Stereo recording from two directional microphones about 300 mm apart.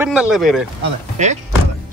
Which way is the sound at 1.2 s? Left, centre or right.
Right.